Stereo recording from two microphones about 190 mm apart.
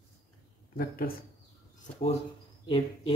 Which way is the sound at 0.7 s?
50° left (ahead or behind).